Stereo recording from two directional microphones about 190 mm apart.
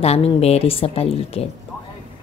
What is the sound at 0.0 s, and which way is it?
A woman's voice, 35° left (ahead or behind).